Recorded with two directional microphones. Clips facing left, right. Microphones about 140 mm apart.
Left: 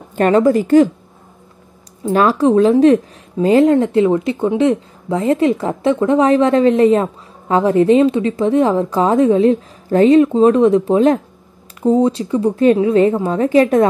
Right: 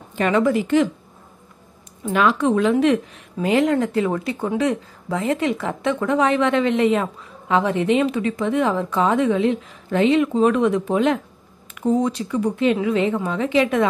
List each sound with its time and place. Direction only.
0.1 s speech: 45° left (ahead or behind)
2.1 s speech: 35° left (ahead or behind)